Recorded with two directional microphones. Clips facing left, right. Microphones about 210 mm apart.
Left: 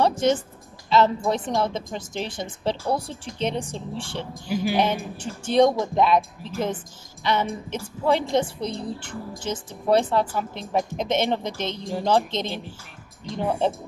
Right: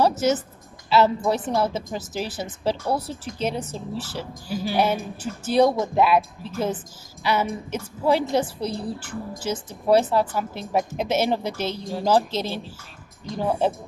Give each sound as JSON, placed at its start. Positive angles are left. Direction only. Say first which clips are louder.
{"t": 0.0, "sound": "a woman's voice", "louder": "even", "side_deg": -5}